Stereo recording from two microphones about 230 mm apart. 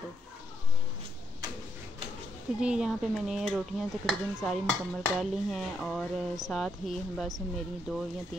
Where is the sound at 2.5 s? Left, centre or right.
Centre.